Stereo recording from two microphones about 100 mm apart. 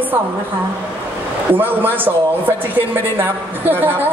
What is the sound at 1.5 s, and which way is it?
Speech, 20° right (ahead or behind).